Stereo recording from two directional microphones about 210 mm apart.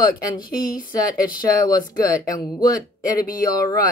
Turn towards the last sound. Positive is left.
turn(degrees=15)  # may be behind; listen again after turning